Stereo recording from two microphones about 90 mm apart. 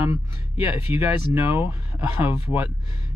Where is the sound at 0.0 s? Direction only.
20° right (ahead or behind).